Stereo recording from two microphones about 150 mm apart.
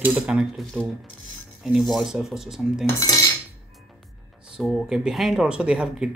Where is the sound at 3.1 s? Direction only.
25° left (ahead or behind).